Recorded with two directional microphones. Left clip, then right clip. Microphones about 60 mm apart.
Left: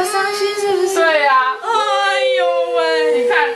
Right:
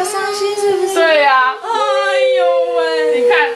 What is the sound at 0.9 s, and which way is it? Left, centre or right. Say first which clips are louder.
Child singing: right 3 dB; right.